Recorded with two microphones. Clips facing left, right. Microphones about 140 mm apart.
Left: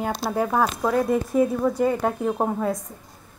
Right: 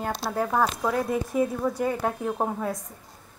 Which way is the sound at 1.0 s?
55° left (ahead or behind).